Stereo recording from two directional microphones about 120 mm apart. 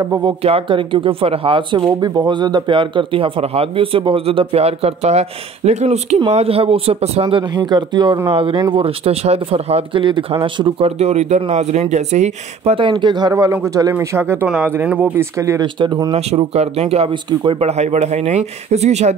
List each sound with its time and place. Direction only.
0.0 s speech: 30° right (ahead or behind)
0.4 s speech: 50° right (ahead or behind); by 6.1 s 70° right (ahead or behind)
6.1 s speech: 50° right (ahead or behind)
8.3 s speech: 50° right (ahead or behind)
8.5 s speech: 35° right (ahead or behind)
8.8 s speech: 55° right (ahead or behind)
10.4 s speech: 45° right (ahead or behind)
11.0 s speech: 70° right (ahead or behind)
12.7 s speech: 45° right (ahead or behind); by 15.2 s 15° right (ahead or behind)
15.3 s speech: 25° right (ahead or behind)
15.6 s speech: 40° right (ahead or behind)
16.5 s speech: 60° right (ahead or behind)
17.1 s speech: 40° right (ahead or behind)
17.6 s speech: 65° right (ahead or behind)